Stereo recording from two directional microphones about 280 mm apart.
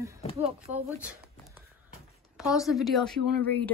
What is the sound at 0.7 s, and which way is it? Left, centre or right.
Speech, right.